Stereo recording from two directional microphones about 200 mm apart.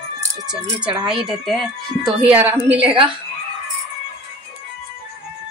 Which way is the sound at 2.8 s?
25° right (ahead or behind).